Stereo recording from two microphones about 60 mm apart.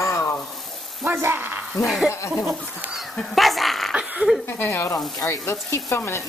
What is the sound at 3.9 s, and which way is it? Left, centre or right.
Speech, centre.